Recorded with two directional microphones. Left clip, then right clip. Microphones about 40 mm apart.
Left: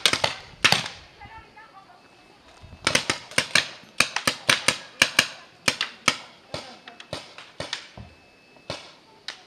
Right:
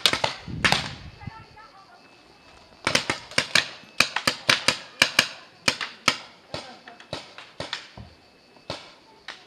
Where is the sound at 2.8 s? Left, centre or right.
Left.